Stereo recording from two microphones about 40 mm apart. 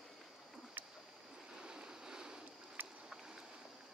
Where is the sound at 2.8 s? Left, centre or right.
Right.